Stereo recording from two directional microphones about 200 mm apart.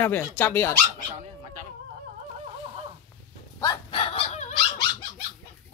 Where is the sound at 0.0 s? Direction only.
10° left (ahead or behind).